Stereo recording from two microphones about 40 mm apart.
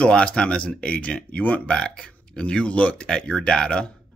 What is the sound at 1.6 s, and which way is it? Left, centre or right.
Speech, left.